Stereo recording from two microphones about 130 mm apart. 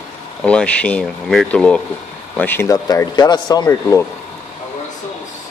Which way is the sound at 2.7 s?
30° left (ahead or behind).